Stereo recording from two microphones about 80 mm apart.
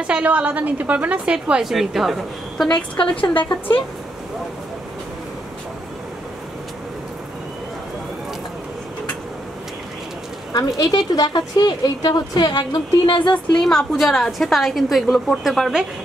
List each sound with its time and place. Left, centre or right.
0.0 s a woman's voice: centre
3.0 s speech: left
10.8 s a woman's voice: left
13.3 s a woman's voice: centre